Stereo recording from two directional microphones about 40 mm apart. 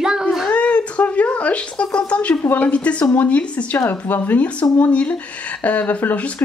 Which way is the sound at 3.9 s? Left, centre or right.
Left.